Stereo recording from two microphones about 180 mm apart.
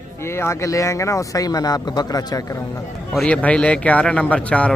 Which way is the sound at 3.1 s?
5° left (ahead or behind).